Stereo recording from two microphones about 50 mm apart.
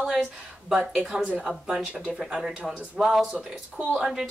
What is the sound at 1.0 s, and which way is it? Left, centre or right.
Speech, centre.